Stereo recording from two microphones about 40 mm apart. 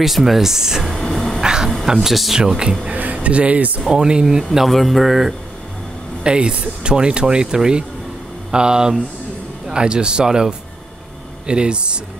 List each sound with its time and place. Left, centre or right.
0.0 s speech: centre
0.9 s a sound: centre
1.4 s crow: centre
1.9 s speech: centre
2.3 s speech: centre
2.9 s speech: right
3.9 s speech: right
4.6 s speech: centre
6.2 s speech: right